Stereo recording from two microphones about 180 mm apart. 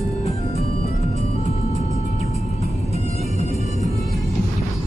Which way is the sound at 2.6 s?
35° left (ahead or behind).